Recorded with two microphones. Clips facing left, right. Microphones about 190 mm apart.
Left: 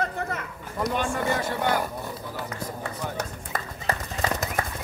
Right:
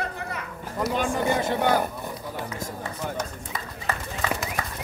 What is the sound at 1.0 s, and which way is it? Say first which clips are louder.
Speech: right 2 dB; 20° right (ahead or behind).